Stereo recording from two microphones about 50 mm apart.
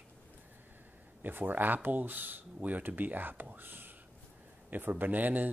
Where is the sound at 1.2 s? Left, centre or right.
Right.